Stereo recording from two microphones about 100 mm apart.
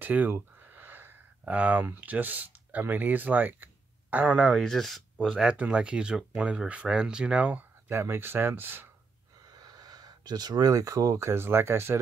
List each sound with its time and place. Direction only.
0.0 s speech: 15° right (ahead or behind)
4.6 s speech: 5° left (ahead or behind); by 7.6 s 10° right (ahead or behind)
7.9 s speech: 25° right (ahead or behind)
9.5 s speech: 40° right (ahead or behind); by 12.0 s 25° right (ahead or behind)